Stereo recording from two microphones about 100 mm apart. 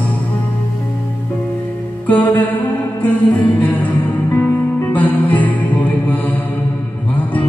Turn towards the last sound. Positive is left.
turn(degrees=15)  # may be behind; listen again after turning